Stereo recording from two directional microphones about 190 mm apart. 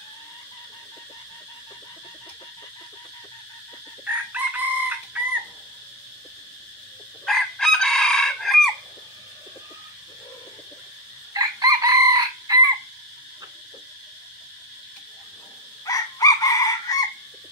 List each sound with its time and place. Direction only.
4.0 s chicken: 10° right (ahead or behind)
7.2 s chicken: centre (ahead or behind)
11.3 s chicken: 20° right (ahead or behind)
15.8 s chicken: 20° left (ahead or behind)